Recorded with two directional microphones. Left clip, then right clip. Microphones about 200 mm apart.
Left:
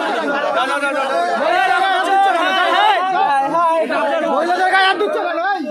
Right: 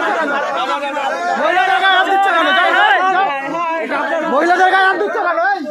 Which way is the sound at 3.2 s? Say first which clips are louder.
Left 4 dB; 25° left (ahead or behind).